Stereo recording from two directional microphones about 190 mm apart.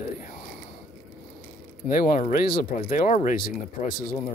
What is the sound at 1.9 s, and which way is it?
Speech, 45° left (ahead or behind).